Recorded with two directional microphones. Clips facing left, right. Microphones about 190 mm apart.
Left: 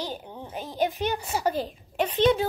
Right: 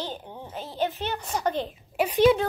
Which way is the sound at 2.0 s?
10° right (ahead or behind).